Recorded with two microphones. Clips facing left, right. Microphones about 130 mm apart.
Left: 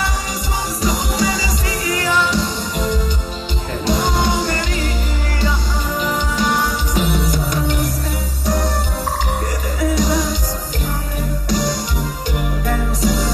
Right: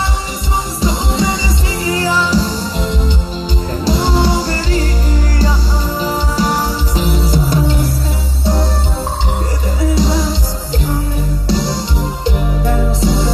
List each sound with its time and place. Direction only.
0.7 s music: 25° right (ahead or behind)
6.0 s music: 35° right (ahead or behind)
9.9 s music: 30° right (ahead or behind)
11.4 s music: 30° right (ahead or behind)